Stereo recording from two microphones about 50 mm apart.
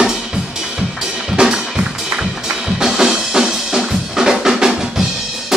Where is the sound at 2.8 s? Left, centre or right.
Centre.